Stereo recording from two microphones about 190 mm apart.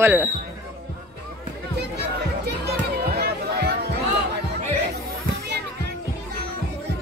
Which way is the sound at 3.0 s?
55° right (ahead or behind).